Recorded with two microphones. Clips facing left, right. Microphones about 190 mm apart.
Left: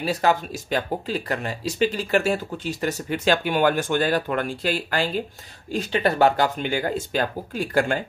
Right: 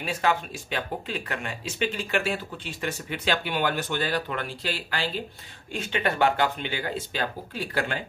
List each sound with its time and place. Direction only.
0.0 s speech: 40° left (ahead or behind)